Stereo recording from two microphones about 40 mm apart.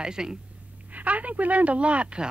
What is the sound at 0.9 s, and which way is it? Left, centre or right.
Speech, right.